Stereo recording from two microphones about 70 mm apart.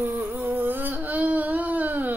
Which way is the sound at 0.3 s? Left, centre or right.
Right.